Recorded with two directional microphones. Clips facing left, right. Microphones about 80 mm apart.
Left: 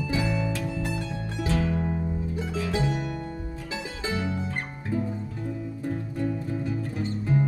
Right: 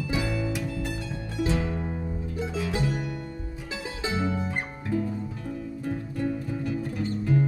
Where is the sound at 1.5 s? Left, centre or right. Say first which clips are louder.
Left 3 dB; centre.